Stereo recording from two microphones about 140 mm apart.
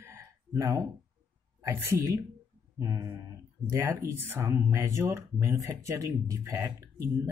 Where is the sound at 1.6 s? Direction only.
15° right (ahead or behind).